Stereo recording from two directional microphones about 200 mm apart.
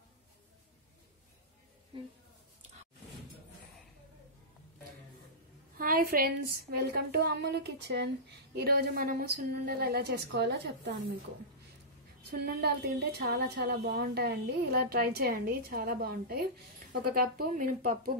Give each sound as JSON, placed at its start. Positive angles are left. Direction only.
{"t": 5.8, "sound": "a woman's voice", "side_deg": -45}
{"t": 12.3, "sound": "a woman's voice", "side_deg": -50}